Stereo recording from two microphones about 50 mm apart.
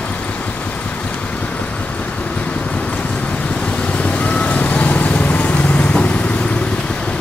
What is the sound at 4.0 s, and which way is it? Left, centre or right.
Vehicle, left.